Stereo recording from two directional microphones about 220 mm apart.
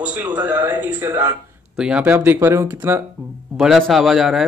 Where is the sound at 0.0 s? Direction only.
5° right (ahead or behind).